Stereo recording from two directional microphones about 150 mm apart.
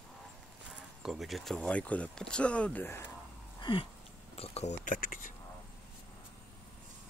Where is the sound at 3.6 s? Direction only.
35° left (ahead or behind).